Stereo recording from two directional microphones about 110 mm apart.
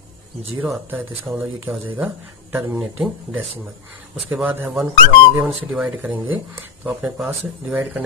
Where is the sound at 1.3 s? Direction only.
25° right (ahead or behind).